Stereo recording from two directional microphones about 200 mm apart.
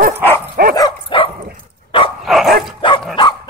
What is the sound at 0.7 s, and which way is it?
Dog, 25° left (ahead or behind).